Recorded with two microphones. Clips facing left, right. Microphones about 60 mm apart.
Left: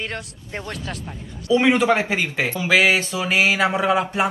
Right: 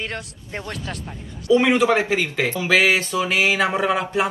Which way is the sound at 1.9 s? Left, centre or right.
Left.